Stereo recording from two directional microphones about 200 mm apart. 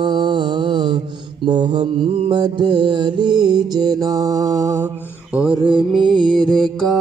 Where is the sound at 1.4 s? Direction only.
25° right (ahead or behind).